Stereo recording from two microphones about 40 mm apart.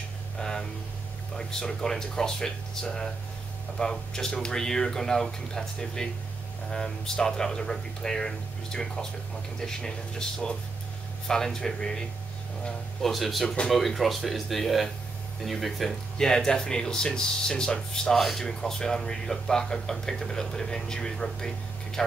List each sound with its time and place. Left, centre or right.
0.4 s a sound: centre
1.3 s speech: centre
13.0 s speech: centre
16.2 s speech: centre
18.2 s speech: centre
18.6 s speech: centre